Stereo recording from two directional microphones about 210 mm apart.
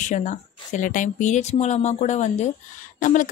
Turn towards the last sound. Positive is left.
turn(degrees=40)  # may be behind; listen again after turning